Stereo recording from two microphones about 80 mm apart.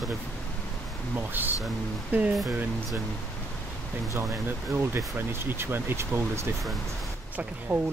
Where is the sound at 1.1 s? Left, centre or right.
Right.